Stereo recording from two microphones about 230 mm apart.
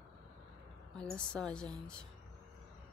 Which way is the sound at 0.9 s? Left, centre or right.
Centre.